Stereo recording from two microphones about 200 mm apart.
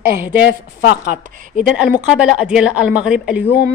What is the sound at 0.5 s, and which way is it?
Speech, 55° left (ahead or behind).